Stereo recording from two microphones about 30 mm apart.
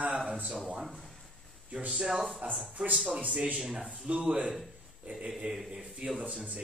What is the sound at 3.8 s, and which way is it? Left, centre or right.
Speech, right.